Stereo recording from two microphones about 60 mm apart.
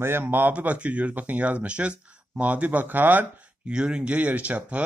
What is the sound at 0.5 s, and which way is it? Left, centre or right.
A man's voice, right.